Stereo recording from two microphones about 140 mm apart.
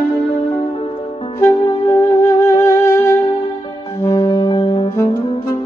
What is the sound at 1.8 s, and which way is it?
Music, 20° left (ahead or behind).